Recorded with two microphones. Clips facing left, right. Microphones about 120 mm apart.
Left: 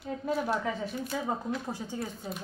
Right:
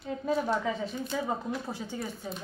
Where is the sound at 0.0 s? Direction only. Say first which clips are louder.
Right 2 dB; 5° left (ahead or behind).